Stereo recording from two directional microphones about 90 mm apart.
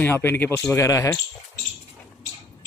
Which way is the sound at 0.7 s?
35° left (ahead or behind).